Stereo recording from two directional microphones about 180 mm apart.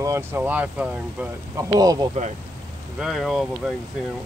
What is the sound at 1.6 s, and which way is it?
Speech, 20° right (ahead or behind).